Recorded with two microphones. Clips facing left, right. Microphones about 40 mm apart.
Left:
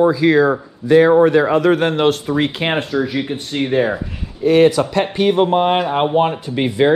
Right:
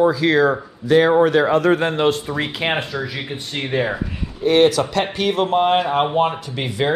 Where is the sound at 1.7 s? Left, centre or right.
Left.